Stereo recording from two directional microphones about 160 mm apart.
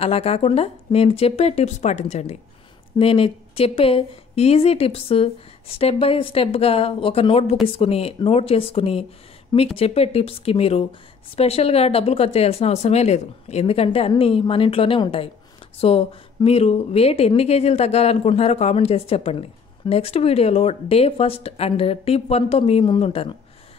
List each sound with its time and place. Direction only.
0.0 s speech: 40° left (ahead or behind)